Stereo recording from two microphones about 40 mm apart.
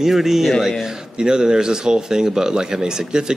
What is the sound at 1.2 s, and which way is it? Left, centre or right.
Speech, centre.